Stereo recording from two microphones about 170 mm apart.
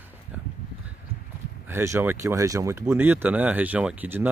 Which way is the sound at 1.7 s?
15° right (ahead or behind).